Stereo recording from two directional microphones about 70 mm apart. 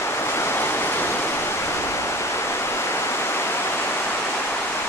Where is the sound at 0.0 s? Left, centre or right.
Left.